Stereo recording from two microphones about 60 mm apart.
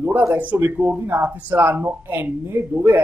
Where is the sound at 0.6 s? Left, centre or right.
Right.